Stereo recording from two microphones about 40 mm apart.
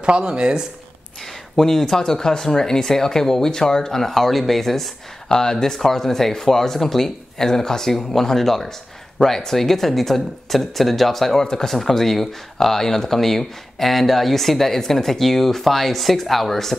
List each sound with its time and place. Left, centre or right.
0.2 s speech: centre
1.6 s speech: centre